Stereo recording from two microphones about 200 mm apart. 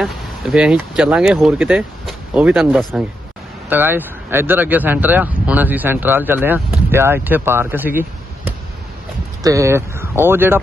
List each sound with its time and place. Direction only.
0.0 s speech: 5° right (ahead or behind)
3.6 s speech: 10° right (ahead or behind)